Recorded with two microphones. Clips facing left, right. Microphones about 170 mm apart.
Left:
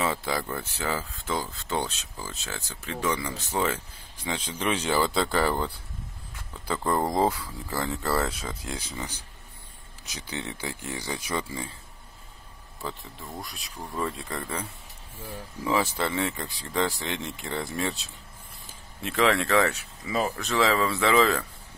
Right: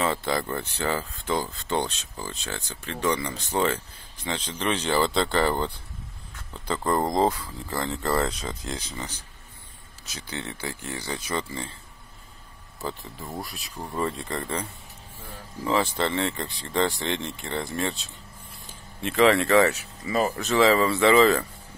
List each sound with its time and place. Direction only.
0.0 s speech: 5° left (ahead or behind)
12.8 s speech: centre (ahead or behind)